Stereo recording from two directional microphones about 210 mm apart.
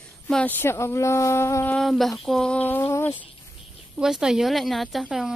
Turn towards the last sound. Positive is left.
turn(degrees=0)  # may be behind; listen again after turning